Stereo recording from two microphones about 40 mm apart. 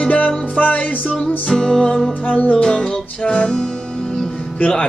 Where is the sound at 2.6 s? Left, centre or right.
Centre.